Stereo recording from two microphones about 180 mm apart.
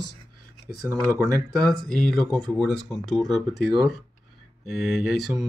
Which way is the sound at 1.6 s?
5° left (ahead or behind).